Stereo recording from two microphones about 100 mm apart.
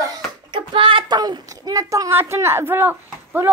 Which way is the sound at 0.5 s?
55° right (ahead or behind).